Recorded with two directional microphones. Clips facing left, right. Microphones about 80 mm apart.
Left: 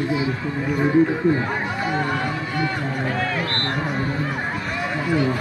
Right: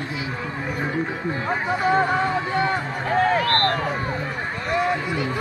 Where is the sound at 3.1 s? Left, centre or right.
Right.